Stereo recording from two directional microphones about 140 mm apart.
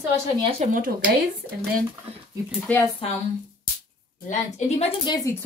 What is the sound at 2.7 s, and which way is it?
Speech, 10° left (ahead or behind).